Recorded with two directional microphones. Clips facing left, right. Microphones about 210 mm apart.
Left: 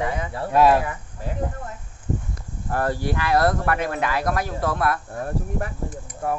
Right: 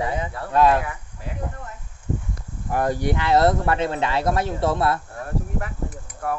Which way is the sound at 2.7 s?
15° right (ahead or behind).